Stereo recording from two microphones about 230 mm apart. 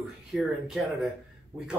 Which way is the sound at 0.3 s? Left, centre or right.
Centre.